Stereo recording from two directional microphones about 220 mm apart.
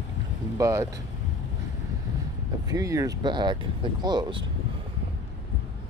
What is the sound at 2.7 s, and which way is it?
Speech, 15° right (ahead or behind).